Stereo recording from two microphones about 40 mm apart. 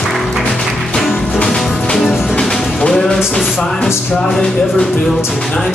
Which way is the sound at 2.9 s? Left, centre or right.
Centre.